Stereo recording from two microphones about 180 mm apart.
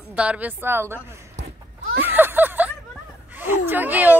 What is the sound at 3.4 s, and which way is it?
Speech, 10° right (ahead or behind).